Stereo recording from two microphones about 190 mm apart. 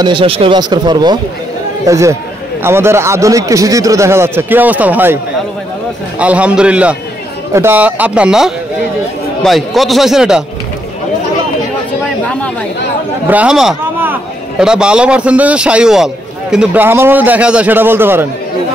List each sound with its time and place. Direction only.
0.0 s a man's voice: 25° right (ahead or behind); by 10.4 s 5° right (ahead or behind)
13.3 s a man's voice: 5° right (ahead or behind)